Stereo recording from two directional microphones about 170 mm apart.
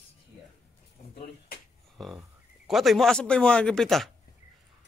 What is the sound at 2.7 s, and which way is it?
Speech, centre (ahead or behind).